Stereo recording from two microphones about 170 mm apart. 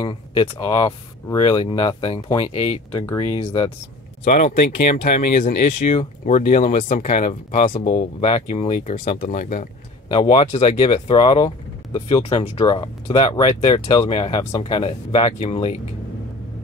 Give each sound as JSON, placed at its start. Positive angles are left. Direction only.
{"t": 0.0, "sound": "speech", "side_deg": 30}
{"t": 4.2, "sound": "speech", "side_deg": 50}
{"t": 5.9, "sound": "speech", "side_deg": 35}
{"t": 8.2, "sound": "speech", "side_deg": 40}
{"t": 8.7, "sound": "speech", "side_deg": 55}
{"t": 9.0, "sound": "speech", "side_deg": 35}
{"t": 9.4, "sound": "speech", "side_deg": 50}
{"t": 10.0, "sound": "speech", "side_deg": 30}